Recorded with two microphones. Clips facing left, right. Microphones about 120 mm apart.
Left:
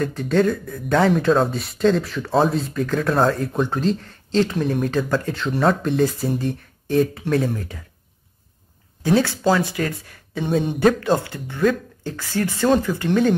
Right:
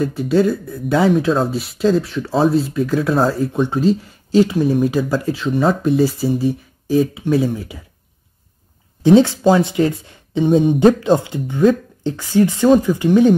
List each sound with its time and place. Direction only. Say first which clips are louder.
0.0 s speech: right 3 dB; 5° right (ahead or behind)
9.0 s speech: right 7 dB; 20° right (ahead or behind)